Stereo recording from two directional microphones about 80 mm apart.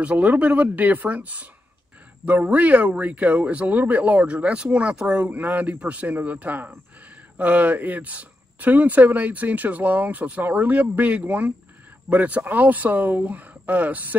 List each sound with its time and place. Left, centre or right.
0.0 s speech: centre